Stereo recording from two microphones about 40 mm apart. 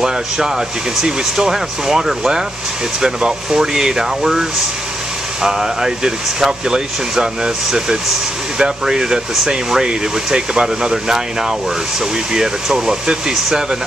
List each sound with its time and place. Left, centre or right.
0.0 s speech: centre